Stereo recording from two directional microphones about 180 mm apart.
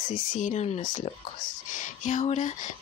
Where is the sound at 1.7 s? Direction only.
45° left (ahead or behind).